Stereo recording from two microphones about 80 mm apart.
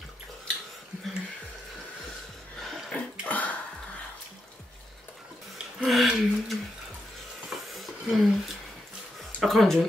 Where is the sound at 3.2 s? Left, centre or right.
Centre.